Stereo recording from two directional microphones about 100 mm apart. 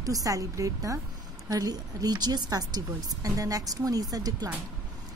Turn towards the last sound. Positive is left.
turn(degrees=-35)  # may be behind; listen again after turning